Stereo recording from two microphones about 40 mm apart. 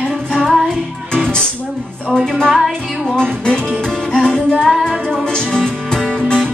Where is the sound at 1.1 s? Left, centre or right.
Centre.